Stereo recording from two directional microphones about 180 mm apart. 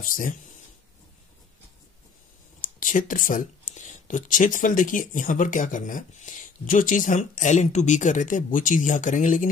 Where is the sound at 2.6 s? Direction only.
50° left (ahead or behind).